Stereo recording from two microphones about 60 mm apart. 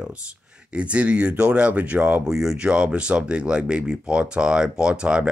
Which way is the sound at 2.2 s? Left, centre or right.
Centre.